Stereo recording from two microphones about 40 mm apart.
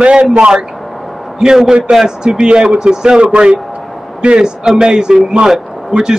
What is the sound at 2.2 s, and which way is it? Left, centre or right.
A man's voice, right.